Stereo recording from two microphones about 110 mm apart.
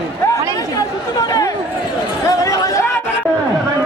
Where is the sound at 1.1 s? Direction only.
35° left (ahead or behind).